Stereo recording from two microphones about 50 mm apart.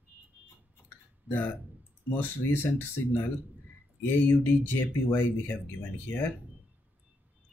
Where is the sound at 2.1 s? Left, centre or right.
Left.